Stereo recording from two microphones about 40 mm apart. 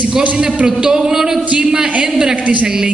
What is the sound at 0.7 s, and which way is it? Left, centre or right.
A woman's voice, right.